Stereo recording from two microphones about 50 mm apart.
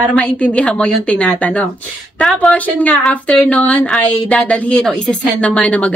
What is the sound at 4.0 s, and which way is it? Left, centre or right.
A woman's voice, left.